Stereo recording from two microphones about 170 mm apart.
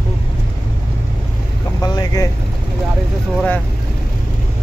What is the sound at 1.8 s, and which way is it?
Boat, 20° left (ahead or behind).